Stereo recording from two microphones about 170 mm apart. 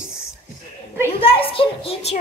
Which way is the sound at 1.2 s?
30° left (ahead or behind).